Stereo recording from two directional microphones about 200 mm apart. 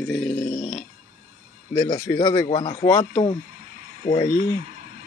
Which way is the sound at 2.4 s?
25° left (ahead or behind).